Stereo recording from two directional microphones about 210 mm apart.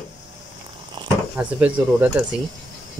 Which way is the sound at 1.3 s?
5° right (ahead or behind).